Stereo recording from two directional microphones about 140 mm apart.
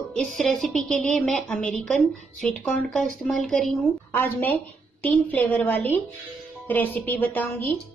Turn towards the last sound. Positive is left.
turn(degrees=10)  # may be behind; listen again after turning